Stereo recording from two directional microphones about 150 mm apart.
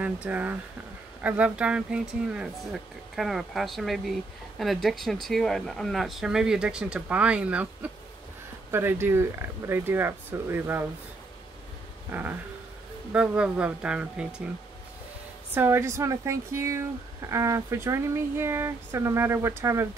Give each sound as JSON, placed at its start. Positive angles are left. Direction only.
{"t": 0.0, "sound": "speech", "side_deg": -10}
{"t": 12.1, "sound": "speech", "side_deg": -10}
{"t": 15.5, "sound": "speech", "side_deg": -15}